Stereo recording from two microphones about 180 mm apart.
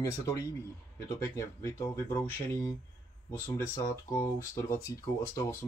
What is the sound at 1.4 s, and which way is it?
Speech, 15° left (ahead or behind).